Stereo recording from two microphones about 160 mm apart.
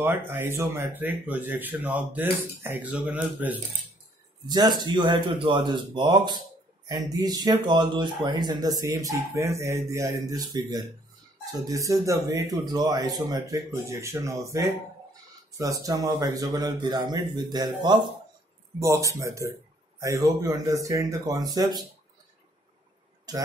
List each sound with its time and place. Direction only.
0.0 s speech: 10° right (ahead or behind)
4.5 s speech: 25° right (ahead or behind)
15.5 s speech: 20° right (ahead or behind)
23.3 s speech: 25° right (ahead or behind)